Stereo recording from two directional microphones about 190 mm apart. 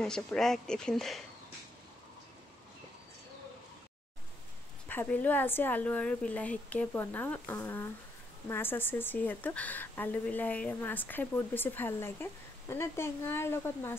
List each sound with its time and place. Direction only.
0.0 s speech: 5° left (ahead or behind)
4.8 s a woman's voice: 10° left (ahead or behind)